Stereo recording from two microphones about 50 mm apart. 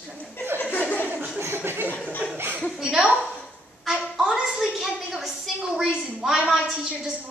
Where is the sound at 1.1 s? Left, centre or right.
Right.